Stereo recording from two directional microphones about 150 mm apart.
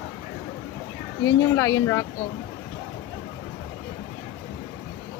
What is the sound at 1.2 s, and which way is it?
Speech, 20° left (ahead or behind).